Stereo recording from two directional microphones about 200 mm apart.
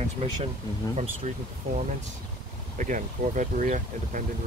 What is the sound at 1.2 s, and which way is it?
Speech, 35° right (ahead or behind).